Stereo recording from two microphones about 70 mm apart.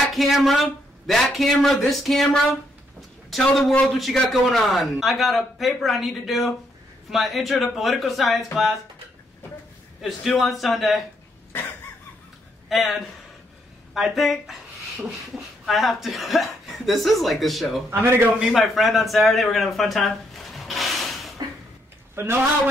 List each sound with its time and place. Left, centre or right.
0.1 s speech: centre
10.0 s speech: centre
12.6 s a man's voice: centre
17.8 s a man's voice: right
18.4 s speech: centre
22.1 s a man's voice: right